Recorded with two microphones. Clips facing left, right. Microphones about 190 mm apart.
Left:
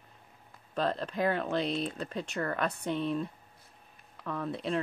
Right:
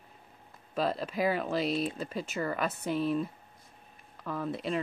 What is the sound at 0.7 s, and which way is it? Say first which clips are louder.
Speech: even; 5° right (ahead or behind).